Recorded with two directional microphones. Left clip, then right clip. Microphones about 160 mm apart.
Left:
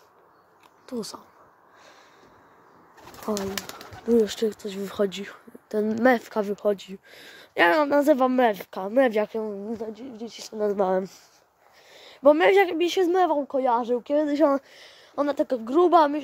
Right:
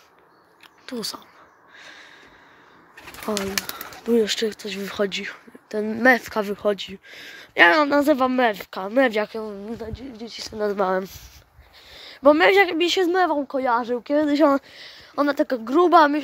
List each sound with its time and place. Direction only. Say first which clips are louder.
0.8 s speech: right 3 dB; 5° left (ahead or behind)
1.8 s a sound: right 9 dB; 5° left (ahead or behind)
3.3 s speech: right 3 dB; 15° right (ahead or behind)
4.0 s speech: right 1 dB; 5° left (ahead or behind)
8.0 s speech: right 1 dB; 20° left (ahead or behind); by 16.2 s 5° right (ahead or behind)